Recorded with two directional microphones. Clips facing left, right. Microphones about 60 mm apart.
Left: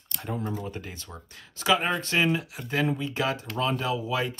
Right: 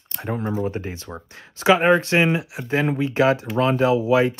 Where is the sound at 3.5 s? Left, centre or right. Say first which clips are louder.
Right 9 dB; centre.